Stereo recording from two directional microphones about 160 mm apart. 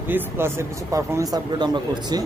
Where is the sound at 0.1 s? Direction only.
15° right (ahead or behind).